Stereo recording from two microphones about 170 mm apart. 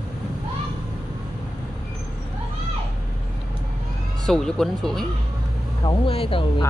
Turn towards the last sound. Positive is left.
turn(degrees=30)  # may be behind; listen again after turning